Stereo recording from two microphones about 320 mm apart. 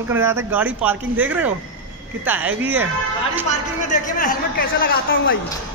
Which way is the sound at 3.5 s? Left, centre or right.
Left.